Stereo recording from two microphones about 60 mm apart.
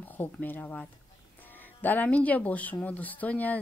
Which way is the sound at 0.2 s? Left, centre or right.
Left.